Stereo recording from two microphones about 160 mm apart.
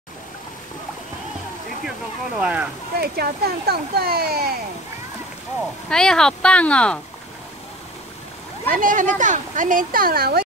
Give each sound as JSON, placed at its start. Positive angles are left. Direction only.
{"t": 2.3, "sound": "speech", "side_deg": -5}
{"t": 3.0, "sound": "speech", "side_deg": -80}
{"t": 5.9, "sound": "speech", "side_deg": 5}
{"t": 8.6, "sound": "speech", "side_deg": -55}